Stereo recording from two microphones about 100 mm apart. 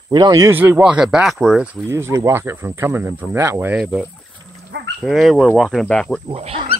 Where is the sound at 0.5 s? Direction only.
20° right (ahead or behind).